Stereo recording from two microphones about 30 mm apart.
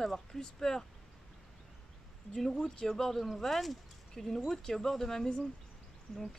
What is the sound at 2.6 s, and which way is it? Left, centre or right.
Speech, centre.